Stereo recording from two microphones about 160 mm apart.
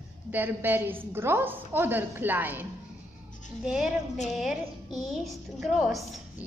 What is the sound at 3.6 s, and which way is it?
A woman's voice, 5° right (ahead or behind).